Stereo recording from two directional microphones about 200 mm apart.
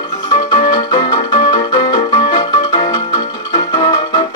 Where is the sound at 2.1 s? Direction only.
20° left (ahead or behind).